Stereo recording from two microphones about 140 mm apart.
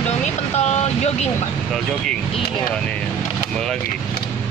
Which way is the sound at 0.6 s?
55° left (ahead or behind).